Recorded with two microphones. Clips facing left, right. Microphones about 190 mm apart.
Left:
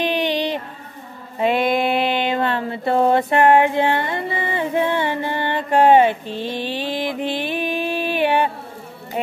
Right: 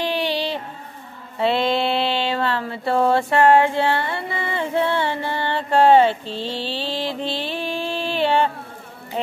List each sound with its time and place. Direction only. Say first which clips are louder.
0.0 s music: left 2 dB; 20° left (ahead or behind)
1.4 s mantra: left 1 dB; 15° left (ahead or behind)